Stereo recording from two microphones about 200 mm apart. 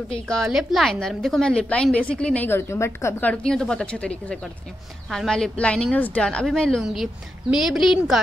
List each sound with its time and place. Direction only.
0.3 s a woman's voice: centre (ahead or behind)